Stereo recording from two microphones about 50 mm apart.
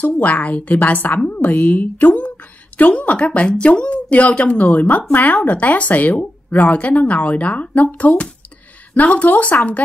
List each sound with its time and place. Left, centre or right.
0.2 s a woman's voice: left